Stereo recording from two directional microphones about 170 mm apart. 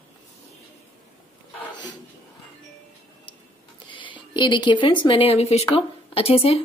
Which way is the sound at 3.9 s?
30° left (ahead or behind).